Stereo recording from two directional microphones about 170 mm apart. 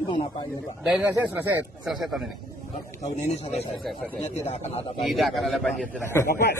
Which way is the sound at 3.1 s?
40° left (ahead or behind).